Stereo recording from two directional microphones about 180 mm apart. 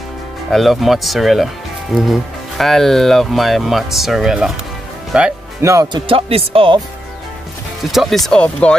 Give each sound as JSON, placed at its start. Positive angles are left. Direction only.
{"t": 0.5, "sound": "speech", "side_deg": 0}
{"t": 5.6, "sound": "speech", "side_deg": -20}
{"t": 6.0, "sound": "speech", "side_deg": -30}
{"t": 7.8, "sound": "speech", "side_deg": 0}